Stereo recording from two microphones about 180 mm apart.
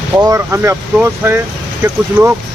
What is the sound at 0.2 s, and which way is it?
Speech, 15° right (ahead or behind).